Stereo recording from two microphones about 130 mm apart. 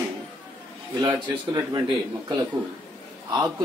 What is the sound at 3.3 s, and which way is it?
Speech, 25° right (ahead or behind).